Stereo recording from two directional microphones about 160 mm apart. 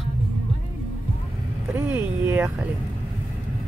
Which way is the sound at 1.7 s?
15° right (ahead or behind).